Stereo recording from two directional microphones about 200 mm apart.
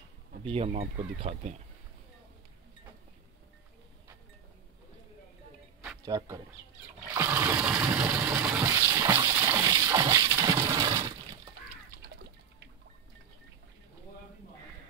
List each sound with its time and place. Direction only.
0.5 s speech: 30° right (ahead or behind)
6.0 s speech: 20° right (ahead or behind)
7.2 s water: 10° right (ahead or behind)